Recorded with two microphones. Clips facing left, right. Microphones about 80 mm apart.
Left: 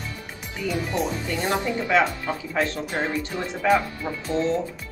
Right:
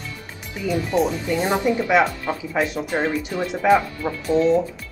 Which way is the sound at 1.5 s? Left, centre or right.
Centre.